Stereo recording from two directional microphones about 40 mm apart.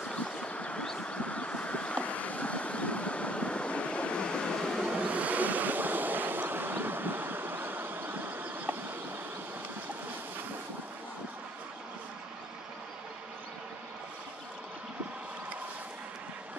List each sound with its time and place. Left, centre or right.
0.1 s a sound: left
0.8 s vehicle: left
4.9 s vehicle: right